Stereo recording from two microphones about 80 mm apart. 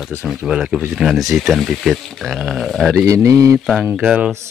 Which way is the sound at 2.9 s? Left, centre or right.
Right.